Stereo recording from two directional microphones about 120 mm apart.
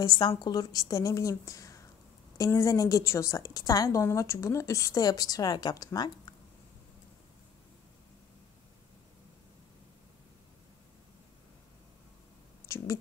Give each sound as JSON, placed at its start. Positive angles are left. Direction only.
{"t": 0.0, "sound": "a woman's voice", "side_deg": 35}
{"t": 12.6, "sound": "speech", "side_deg": 25}